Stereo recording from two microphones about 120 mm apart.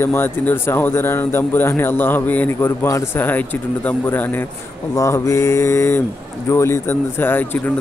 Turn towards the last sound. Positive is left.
turn(degrees=15)  # may be behind; listen again after turning